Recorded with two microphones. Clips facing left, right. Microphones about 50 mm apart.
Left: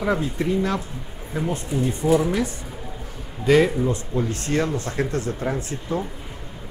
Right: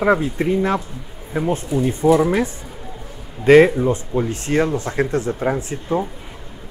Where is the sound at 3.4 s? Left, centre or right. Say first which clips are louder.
Right 7 dB; right.